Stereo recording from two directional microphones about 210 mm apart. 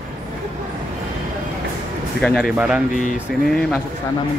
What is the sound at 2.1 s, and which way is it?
Speech, 5° left (ahead or behind).